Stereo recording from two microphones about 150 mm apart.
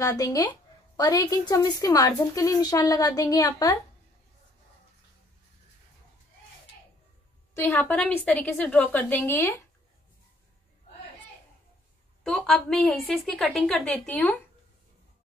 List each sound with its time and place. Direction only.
0.0 s a woman's voice: 25° left (ahead or behind)
7.5 s a woman's voice: 15° left (ahead or behind)
12.2 s a woman's voice: 5° left (ahead or behind)